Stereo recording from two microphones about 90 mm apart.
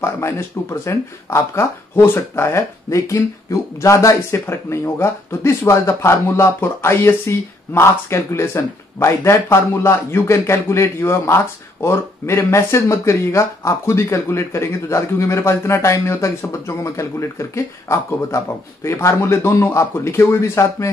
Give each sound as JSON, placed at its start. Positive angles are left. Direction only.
{"t": 0.0, "sound": "speech", "side_deg": 30}